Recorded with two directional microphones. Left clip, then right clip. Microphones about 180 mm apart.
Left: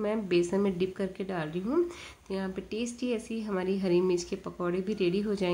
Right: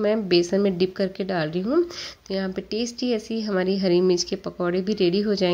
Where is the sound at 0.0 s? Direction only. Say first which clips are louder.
Right 8 dB; 30° right (ahead or behind).